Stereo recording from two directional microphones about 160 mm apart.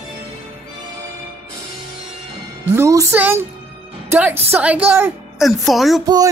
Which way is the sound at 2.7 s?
20° right (ahead or behind).